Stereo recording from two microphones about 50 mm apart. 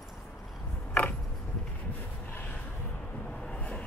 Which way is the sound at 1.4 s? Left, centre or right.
Left.